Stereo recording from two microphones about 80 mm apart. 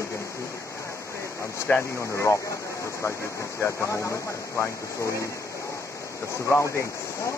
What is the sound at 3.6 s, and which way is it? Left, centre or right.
Speech, left.